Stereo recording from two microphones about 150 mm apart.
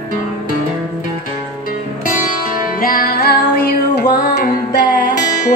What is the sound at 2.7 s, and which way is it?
Music, 75° left (ahead or behind).